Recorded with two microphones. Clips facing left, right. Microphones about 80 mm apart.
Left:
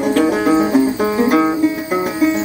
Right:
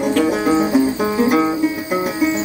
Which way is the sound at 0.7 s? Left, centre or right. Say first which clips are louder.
Left 2 dB; centre.